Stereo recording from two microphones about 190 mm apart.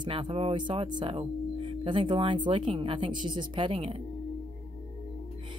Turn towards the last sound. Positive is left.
turn(degrees=-30)  # may be behind; listen again after turning